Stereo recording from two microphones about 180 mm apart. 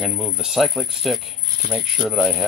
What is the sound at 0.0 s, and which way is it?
Speech, 5° right (ahead or behind).